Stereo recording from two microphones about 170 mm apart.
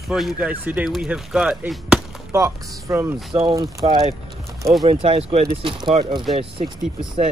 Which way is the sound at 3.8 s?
35° right (ahead or behind).